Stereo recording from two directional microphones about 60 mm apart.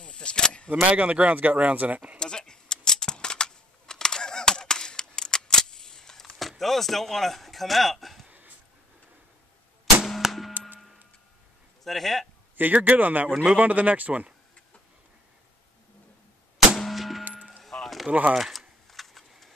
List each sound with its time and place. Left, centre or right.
0.0 s a sound: centre
0.8 s speech: right
2.1 s a sound: centre
6.6 s speech: centre
8.3 s wheeze: right
10.0 s clang: centre
11.8 s speech: centre
12.5 s speech: right
16.5 s gunshot: centre
17.6 s a sound: centre
18.3 s typing: centre